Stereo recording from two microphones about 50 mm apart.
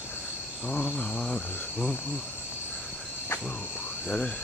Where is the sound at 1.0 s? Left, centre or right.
Centre.